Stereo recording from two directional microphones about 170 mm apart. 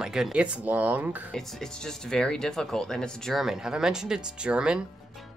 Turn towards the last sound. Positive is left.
turn(degrees=-5)  # may be behind; listen again after turning